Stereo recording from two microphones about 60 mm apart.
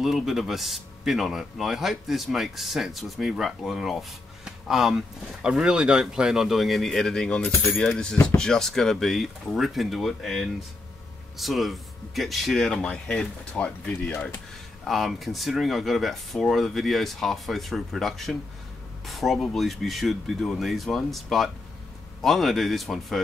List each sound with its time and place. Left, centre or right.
0.0 s speech: centre
13.5 s speech: left
14.0 s speech: centre
14.9 s speech: centre